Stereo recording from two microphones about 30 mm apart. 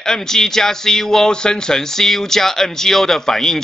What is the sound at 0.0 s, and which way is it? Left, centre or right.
Speech, centre.